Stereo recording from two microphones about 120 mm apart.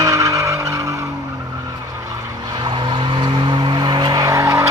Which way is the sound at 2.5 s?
40° right (ahead or behind).